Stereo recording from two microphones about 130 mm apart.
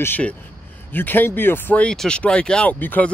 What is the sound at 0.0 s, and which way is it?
Speech, 15° left (ahead or behind).